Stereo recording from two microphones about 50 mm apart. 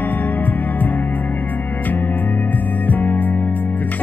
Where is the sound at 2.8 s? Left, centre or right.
Left.